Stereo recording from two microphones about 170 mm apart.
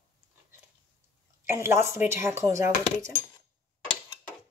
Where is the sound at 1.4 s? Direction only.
15° right (ahead or behind).